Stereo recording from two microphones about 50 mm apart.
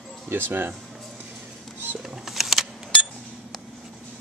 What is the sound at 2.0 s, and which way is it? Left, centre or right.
Shuffling cards, centre.